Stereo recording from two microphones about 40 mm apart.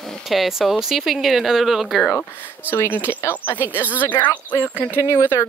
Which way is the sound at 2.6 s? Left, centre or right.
Right.